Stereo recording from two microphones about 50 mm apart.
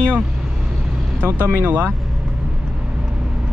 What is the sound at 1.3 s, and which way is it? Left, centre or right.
Speech, right.